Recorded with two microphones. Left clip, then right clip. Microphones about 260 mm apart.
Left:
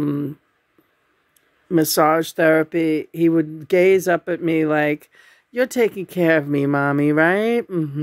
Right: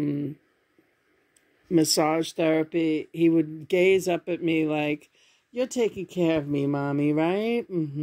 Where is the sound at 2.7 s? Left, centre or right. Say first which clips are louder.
Left 5 dB; left.